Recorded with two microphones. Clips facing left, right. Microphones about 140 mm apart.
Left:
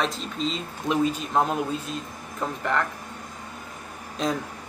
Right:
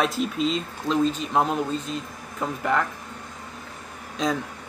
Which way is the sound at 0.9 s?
10° left (ahead or behind).